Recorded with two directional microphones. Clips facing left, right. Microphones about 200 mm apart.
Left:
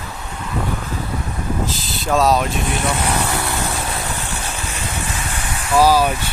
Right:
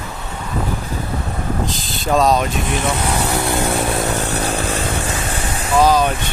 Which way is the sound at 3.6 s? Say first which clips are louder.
Right 6 dB; 55° right (ahead or behind).